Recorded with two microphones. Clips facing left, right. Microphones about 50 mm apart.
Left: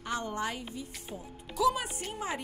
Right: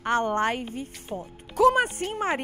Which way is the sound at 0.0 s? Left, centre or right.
Right.